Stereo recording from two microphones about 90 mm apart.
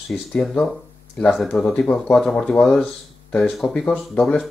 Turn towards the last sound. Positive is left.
turn(degrees=15)  # may be behind; listen again after turning